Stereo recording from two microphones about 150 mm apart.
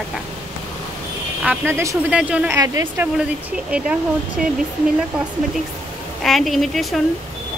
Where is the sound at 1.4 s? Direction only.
15° right (ahead or behind).